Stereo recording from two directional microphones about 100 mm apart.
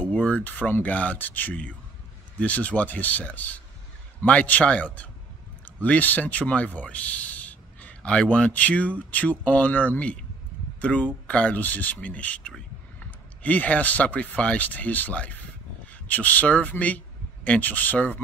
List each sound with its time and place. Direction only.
0.0 s speech: 15° left (ahead or behind)